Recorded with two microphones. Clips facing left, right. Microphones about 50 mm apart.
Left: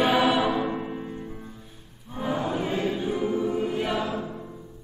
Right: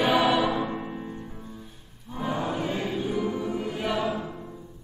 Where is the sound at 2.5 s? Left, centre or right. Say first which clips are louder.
Left 2 dB; centre.